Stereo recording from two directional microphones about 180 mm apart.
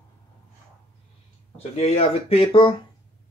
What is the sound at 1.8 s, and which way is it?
Speech, 35° left (ahead or behind).